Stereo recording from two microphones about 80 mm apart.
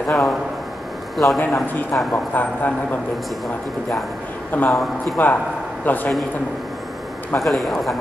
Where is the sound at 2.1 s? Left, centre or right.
Left.